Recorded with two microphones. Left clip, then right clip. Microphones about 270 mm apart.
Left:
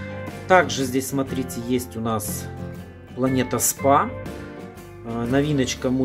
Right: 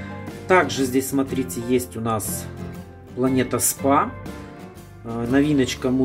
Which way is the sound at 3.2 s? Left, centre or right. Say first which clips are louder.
Right 1 dB; centre.